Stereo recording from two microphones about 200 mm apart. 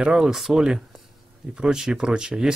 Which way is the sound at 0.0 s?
Centre (ahead or behind).